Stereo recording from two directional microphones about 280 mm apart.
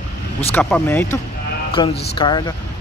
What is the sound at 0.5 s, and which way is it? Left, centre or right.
Speech, centre.